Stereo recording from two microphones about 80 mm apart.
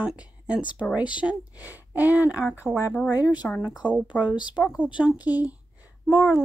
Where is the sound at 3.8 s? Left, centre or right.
Centre.